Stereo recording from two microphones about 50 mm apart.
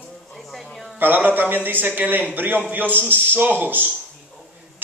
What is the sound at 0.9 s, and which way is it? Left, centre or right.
A man's voice, right.